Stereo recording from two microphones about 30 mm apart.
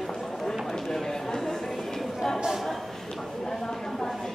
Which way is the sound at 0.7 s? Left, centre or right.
Centre.